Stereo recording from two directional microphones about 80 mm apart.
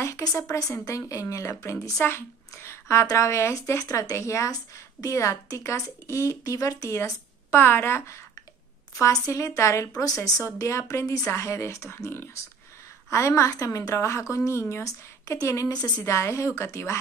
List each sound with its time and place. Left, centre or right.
0.0 s a woman's voice: left
7.5 s a woman's voice: left
16.1 s a woman's voice: left